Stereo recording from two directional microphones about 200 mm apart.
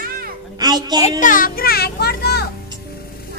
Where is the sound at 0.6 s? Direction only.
20° right (ahead or behind).